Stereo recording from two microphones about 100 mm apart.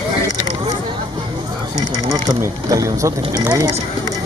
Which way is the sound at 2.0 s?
35° right (ahead or behind).